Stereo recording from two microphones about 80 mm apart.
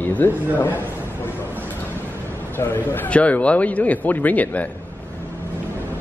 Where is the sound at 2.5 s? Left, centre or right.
Left.